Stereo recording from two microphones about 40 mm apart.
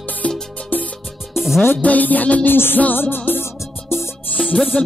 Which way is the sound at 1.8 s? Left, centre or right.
Left.